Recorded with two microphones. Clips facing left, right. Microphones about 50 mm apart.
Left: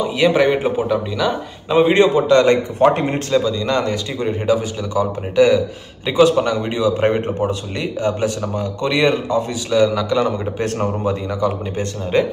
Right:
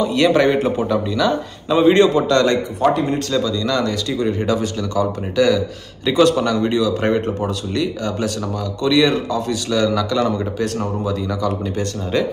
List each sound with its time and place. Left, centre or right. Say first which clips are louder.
0.0 s a man's voice: even; centre
2.9 s speech: even; left
3.3 s speech: left 2 dB; left
10.6 s speech: left 2 dB; left
11.2 s speech: left 1 dB; left